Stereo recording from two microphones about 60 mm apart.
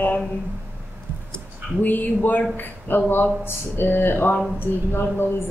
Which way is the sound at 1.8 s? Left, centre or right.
Left.